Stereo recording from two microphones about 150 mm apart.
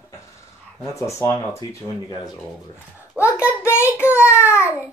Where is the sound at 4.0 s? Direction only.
15° left (ahead or behind).